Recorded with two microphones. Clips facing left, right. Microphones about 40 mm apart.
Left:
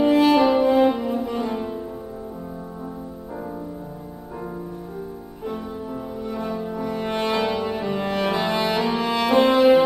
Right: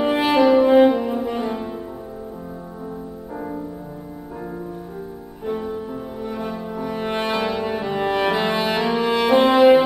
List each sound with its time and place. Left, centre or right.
0.1 s french horn: right
0.4 s french horn: centre
5.4 s music: centre